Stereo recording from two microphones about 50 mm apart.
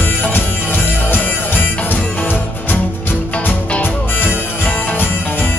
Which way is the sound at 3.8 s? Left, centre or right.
Left.